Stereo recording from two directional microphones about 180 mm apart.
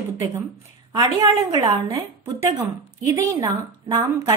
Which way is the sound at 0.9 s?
20° right (ahead or behind).